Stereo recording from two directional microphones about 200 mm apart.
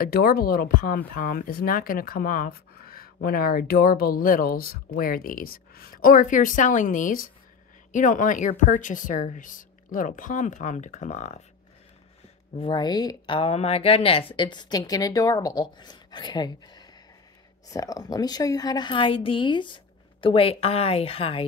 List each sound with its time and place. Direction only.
0.0 s a woman's voice: 50° left (ahead or behind)
12.5 s speech: 25° left (ahead or behind)